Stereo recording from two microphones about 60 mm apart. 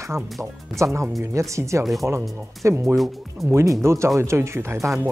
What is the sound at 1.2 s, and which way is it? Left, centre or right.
Speech, right.